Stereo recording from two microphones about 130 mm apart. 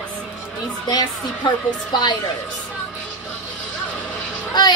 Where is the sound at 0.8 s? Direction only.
35° left (ahead or behind).